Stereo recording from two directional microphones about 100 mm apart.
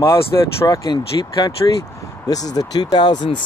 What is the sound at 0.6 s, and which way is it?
Speech, 40° left (ahead or behind).